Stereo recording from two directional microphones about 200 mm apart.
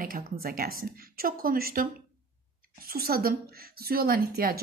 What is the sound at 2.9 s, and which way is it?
Speech, 50° right (ahead or behind).